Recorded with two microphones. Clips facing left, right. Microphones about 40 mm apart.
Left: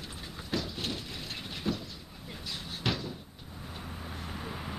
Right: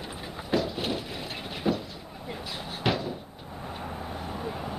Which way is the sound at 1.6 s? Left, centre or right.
Centre.